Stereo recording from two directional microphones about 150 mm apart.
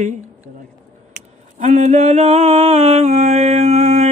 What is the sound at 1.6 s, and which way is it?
Mantra, 50° right (ahead or behind).